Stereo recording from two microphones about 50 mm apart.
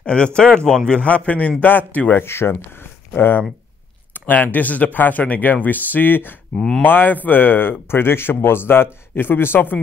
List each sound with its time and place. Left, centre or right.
0.0 s a man's voice: left
2.2 s a man's voice: left
4.1 s speech: left
6.5 s speech: centre
6.8 s a man's voice: left